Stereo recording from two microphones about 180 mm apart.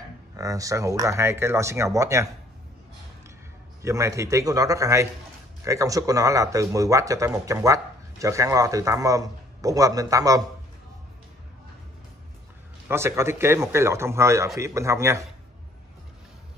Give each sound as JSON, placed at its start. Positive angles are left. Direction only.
{"t": 0.4, "sound": "speech", "side_deg": -20}
{"t": 3.8, "sound": "speech", "side_deg": -15}
{"t": 12.8, "sound": "speech", "side_deg": -15}